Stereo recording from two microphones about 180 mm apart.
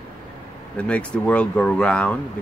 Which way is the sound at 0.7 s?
5° left (ahead or behind).